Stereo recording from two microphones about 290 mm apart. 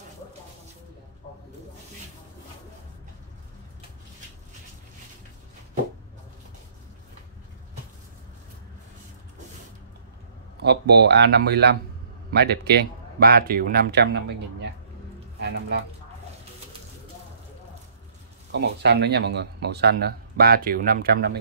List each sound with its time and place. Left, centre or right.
10.6 s speech: right
18.5 s speech: right